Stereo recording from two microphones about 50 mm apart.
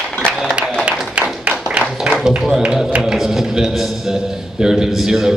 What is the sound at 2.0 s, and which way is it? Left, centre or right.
Music, centre.